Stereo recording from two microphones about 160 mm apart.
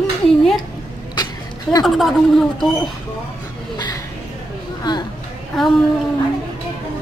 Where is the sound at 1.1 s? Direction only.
25° left (ahead or behind).